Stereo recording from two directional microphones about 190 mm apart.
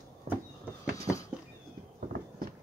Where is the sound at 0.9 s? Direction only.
15° left (ahead or behind).